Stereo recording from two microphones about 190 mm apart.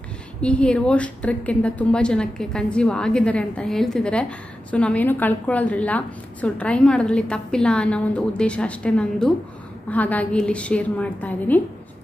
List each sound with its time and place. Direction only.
0.4 s a woman's voice: 5° left (ahead or behind)